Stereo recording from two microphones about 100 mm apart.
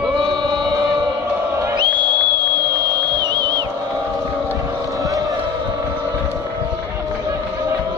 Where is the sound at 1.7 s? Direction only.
50° right (ahead or behind).